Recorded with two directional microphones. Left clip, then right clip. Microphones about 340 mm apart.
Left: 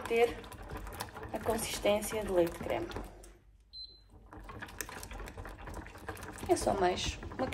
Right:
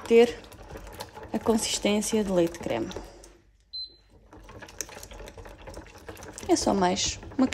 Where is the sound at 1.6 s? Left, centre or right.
Right.